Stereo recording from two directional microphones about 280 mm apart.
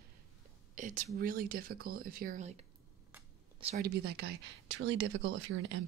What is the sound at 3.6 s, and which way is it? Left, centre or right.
Speech, right.